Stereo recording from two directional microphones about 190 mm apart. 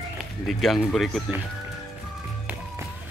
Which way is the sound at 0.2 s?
Centre (ahead or behind).